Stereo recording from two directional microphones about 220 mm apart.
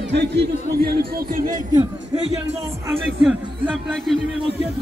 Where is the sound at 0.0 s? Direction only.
50° right (ahead or behind).